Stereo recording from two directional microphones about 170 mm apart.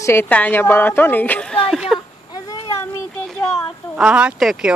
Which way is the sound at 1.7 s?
5° right (ahead or behind).